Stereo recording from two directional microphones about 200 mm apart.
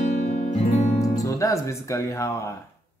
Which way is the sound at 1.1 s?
15° left (ahead or behind).